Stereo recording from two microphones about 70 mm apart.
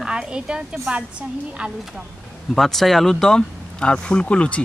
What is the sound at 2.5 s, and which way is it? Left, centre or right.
Speech, centre.